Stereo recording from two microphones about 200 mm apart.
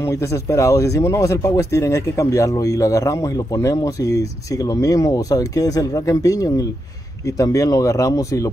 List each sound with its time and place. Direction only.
0.0 s speech: 15° left (ahead or behind)